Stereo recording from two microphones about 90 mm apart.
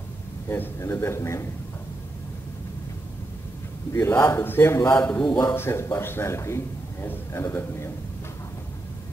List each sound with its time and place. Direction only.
0.5 s a man's voice: 30° left (ahead or behind)
3.9 s a man's voice: 30° left (ahead or behind)
5.0 s a man's voice: 15° left (ahead or behind)
5.5 s a man's voice: 25° left (ahead or behind)